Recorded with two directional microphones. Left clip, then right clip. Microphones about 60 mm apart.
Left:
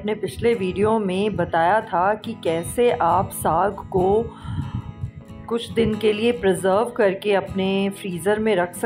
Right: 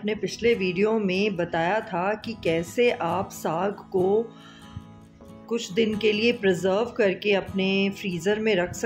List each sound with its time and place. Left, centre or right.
0.0 s speech: left
5.5 s speech: left